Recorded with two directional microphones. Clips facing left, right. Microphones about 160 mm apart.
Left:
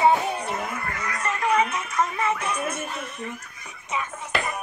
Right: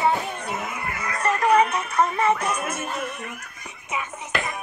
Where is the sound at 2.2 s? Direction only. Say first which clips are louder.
Right 4 dB; 35° right (ahead or behind).